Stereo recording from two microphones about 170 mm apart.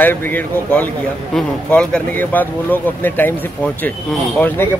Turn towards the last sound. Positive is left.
turn(degrees=10)  # may be behind; listen again after turning